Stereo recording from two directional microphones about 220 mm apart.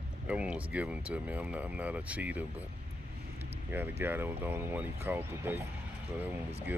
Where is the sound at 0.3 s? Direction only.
5° right (ahead or behind).